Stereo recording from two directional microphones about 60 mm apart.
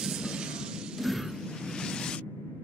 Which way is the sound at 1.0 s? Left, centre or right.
Centre.